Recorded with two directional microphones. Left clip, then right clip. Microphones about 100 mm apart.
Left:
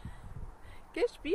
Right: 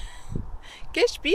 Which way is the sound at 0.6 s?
25° right (ahead or behind).